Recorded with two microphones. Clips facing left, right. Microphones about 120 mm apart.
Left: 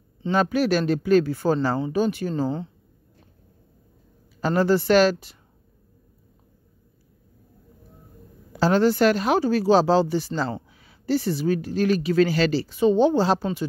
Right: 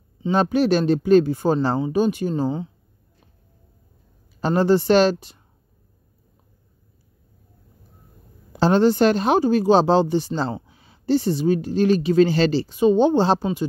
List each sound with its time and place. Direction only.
0.3 s speech: 25° right (ahead or behind)
4.4 s speech: 25° right (ahead or behind)
8.5 s speech: 25° right (ahead or behind)